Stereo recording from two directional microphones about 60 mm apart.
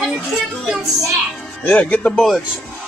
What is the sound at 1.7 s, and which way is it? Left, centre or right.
Speech, left.